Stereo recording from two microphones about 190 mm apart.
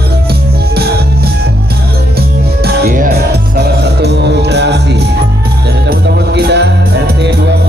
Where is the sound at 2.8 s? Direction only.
45° right (ahead or behind); by 5.0 s 65° right (ahead or behind).